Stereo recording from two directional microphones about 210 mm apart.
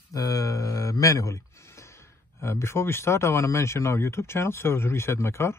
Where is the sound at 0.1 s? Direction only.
15° left (ahead or behind).